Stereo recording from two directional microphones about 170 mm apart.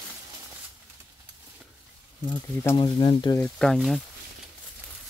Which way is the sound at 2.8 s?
30° left (ahead or behind).